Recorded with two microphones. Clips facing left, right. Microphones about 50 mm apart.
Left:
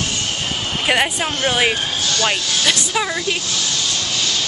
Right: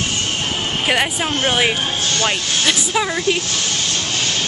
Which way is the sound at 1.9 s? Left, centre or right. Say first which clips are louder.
Right 1 dB; right.